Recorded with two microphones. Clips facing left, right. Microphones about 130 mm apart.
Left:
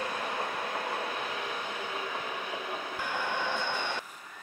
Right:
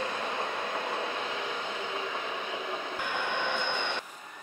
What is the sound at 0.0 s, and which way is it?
Train, 25° right (ahead or behind).